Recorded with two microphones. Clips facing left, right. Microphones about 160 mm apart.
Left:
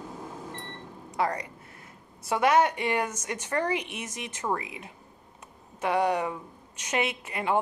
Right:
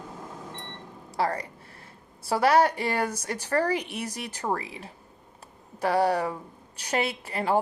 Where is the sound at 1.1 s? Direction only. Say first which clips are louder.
Right 1 dB; 30° right (ahead or behind).